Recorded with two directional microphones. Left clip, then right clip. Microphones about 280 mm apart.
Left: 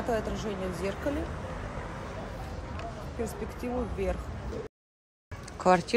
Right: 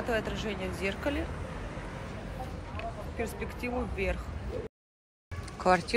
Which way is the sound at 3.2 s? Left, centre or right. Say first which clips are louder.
Even; centre.